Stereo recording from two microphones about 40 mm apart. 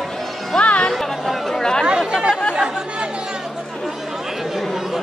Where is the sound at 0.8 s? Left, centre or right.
Centre.